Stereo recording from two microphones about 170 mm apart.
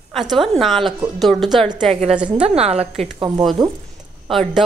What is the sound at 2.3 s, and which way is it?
Speech, 35° right (ahead or behind).